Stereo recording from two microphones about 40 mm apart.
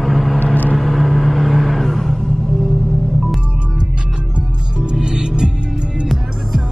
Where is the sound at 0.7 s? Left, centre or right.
Centre.